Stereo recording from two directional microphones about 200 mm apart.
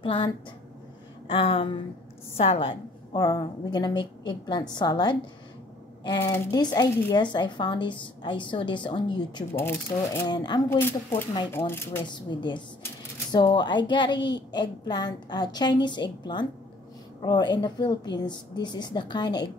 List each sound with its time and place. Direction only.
0.0 s speech: 25° left (ahead or behind)
1.2 s a sound: 25° left (ahead or behind)
2.3 s speech: 30° left (ahead or behind)
9.6 s speech: 10° left (ahead or behind)
10.8 s speech: 10° left (ahead or behind)
12.1 s speech: 20° left (ahead or behind)